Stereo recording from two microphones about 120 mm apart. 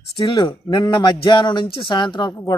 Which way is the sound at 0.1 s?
45° left (ahead or behind).